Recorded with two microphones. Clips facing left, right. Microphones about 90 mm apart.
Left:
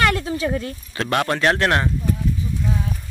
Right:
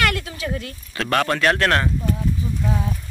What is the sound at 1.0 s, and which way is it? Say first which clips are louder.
Speech: even; 20° left (ahead or behind).